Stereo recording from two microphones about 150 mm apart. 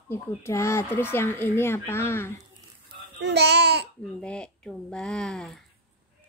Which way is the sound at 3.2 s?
90° right.